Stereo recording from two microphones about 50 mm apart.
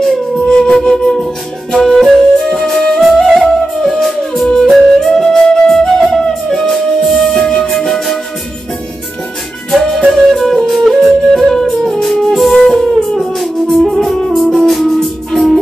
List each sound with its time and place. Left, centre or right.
0.5 s flute: centre
9.7 s music: centre